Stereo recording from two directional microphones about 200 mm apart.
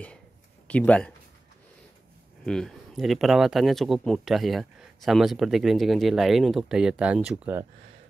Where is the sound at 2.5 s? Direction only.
5° left (ahead or behind).